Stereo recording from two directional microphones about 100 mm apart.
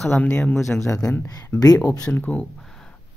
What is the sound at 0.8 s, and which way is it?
Speech, 35° left (ahead or behind).